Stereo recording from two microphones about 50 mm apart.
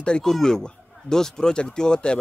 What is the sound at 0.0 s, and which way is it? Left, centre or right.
Speech, centre.